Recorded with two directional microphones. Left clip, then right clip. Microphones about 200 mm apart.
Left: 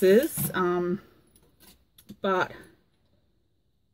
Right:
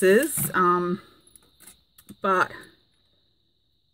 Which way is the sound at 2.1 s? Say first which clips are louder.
Right 4 dB; 10° right (ahead or behind).